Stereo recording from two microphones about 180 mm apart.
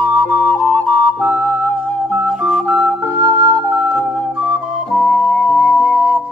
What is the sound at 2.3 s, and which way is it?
Music, centre (ahead or behind).